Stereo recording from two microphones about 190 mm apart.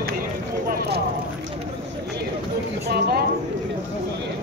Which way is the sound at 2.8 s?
55° right (ahead or behind).